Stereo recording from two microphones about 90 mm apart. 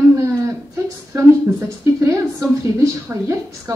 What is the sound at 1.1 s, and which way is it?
A woman's voice, 35° right (ahead or behind).